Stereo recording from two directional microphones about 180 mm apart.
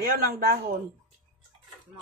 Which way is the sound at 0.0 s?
55° right (ahead or behind).